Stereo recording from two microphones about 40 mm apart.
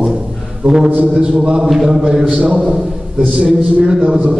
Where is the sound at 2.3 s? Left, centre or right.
Right.